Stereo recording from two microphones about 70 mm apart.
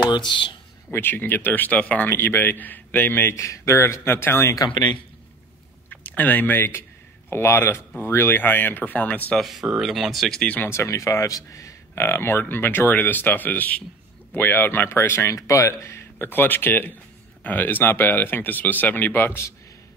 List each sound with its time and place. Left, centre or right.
0.9 s speech: left
2.0 s speech: left
3.3 s speech: left
4.6 s a man's voice: left
5.9 s speech: left
9.4 s speech: centre
10.4 s speech: left
10.7 s speech: left
12.0 s speech: left